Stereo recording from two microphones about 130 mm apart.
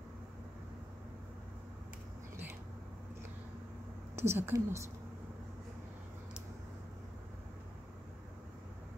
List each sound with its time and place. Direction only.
4.1 s speech: 20° right (ahead or behind)